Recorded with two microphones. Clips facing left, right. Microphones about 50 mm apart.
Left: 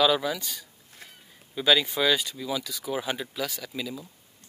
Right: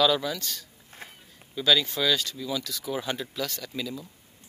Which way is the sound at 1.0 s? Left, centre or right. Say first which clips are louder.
Right 4 dB; right.